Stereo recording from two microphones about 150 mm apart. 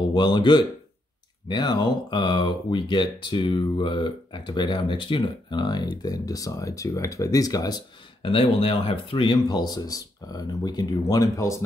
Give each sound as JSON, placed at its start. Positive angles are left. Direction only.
{"t": 0.1, "sound": "speech", "side_deg": 30}